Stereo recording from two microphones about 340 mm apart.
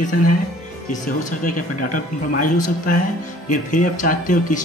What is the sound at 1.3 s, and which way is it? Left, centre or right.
Speech, left.